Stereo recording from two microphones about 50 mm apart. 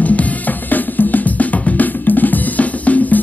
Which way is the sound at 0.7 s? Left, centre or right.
Left.